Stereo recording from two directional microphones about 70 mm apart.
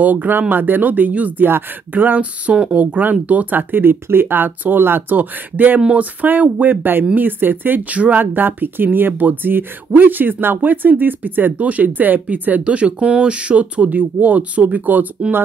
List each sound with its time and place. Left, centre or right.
0.0 s speech: right
5.8 s speech: centre
6.2 s speech: right